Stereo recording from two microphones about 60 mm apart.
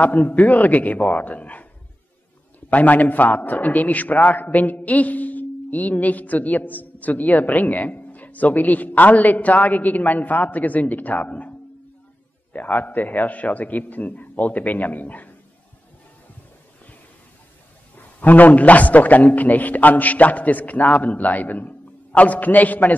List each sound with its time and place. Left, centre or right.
0.0 s a man's voice: left
2.7 s a man's voice: left
12.5 s a man's voice: left
17.9 s a man's voice: left